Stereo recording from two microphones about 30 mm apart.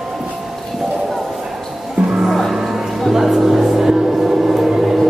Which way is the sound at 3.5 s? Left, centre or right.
Centre.